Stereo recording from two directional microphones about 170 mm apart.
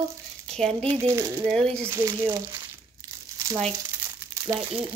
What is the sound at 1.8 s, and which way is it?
Speech, 15° right (ahead or behind).